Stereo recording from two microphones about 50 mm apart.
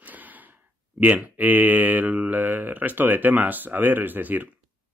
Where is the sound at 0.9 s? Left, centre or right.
Right.